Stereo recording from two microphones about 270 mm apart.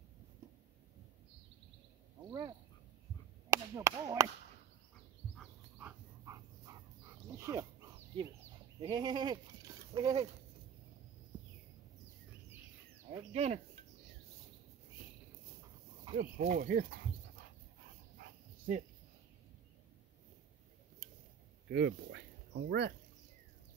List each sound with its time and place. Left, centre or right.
2.2 s speech: centre
3.4 s chop: centre
5.4 s dog: centre
8.8 s speech: centre
13.1 s speech: right
16.2 s speech: right
18.1 s dog: right
21.0 s a sound: right
21.7 s speech: right